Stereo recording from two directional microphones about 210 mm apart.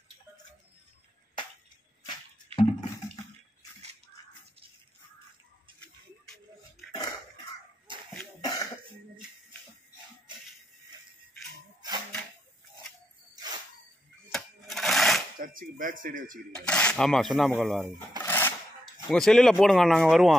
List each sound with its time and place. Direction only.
2.0 s music: 25° left (ahead or behind)
5.8 s a sound: centre (ahead or behind)
7.9 s dog: 25° right (ahead or behind)
8.4 s cough: 15° left (ahead or behind)
14.3 s a sound: centre (ahead or behind)
15.4 s speech: 40° right (ahead or behind)
16.6 s speech: 5° left (ahead or behind)
18.2 s a sound: 10° left (ahead or behind)
19.0 s speech: centre (ahead or behind)